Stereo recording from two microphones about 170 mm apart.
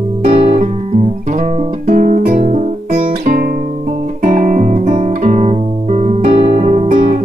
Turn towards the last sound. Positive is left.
turn(degrees=-40)  # may be behind; listen again after turning